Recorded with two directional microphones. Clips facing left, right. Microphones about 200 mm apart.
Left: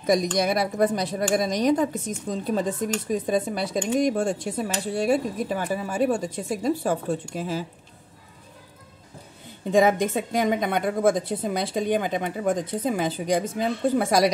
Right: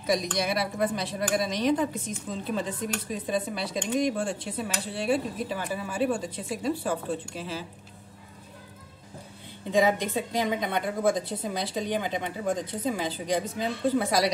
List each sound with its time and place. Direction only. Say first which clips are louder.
0.0 s a woman's voice: left 5 dB; 45° left (ahead or behind)
9.7 s a woman's voice: left 4 dB; 45° left (ahead or behind)